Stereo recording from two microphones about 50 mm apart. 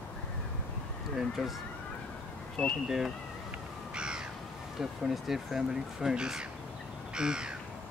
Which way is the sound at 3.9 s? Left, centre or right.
Centre.